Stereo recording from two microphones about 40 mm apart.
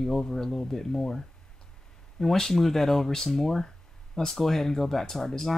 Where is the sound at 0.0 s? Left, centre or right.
Centre.